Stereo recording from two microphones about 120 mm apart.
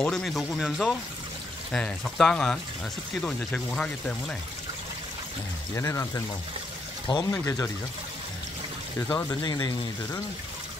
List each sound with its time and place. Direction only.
0.0 s speech: 5° left (ahead or behind)
5.8 s speech: 25° left (ahead or behind)
9.1 s speech: 35° left (ahead or behind)